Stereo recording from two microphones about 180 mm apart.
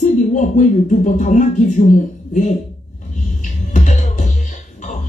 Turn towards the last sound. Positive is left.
turn(degrees=40)  # may be behind; listen again after turning